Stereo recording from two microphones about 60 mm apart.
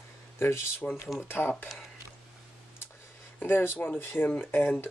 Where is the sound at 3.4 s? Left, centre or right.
Left.